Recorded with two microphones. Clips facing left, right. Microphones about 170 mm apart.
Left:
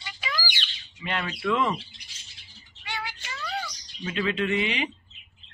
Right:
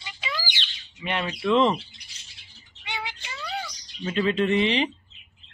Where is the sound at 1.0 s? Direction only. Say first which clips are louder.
Right 2 dB; 20° right (ahead or behind).